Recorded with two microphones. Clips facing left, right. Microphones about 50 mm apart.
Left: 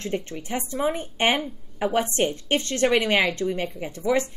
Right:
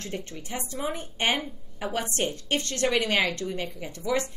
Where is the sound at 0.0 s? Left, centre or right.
Left.